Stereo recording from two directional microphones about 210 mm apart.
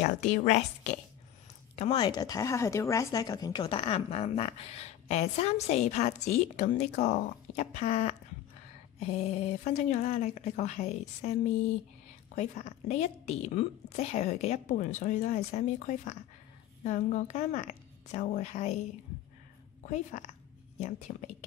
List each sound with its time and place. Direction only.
0.0 s a woman's voice: 35° left (ahead or behind)
12.4 s a woman's voice: 35° left (ahead or behind)
19.9 s a woman's voice: 35° left (ahead or behind)